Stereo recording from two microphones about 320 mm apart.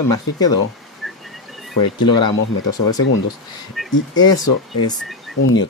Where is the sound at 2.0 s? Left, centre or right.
Centre.